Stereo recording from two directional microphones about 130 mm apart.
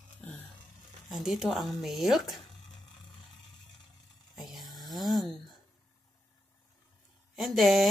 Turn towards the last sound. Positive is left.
turn(degrees=0)  # may be behind; listen again after turning